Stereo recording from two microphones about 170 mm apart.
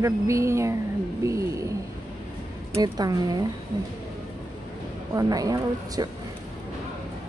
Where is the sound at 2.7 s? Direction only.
25° right (ahead or behind).